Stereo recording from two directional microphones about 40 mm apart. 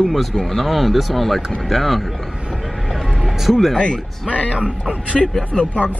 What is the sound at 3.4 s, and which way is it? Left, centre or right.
Speech, centre.